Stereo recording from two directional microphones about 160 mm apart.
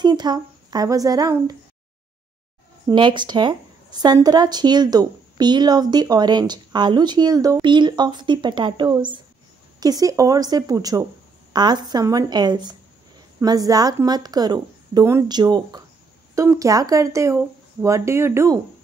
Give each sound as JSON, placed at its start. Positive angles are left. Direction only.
{"t": 0.0, "sound": "speech", "side_deg": -25}
{"t": 2.9, "sound": "speech", "side_deg": -30}